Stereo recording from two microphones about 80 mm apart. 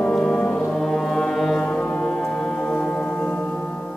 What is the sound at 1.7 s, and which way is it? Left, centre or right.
Brass instrument, centre.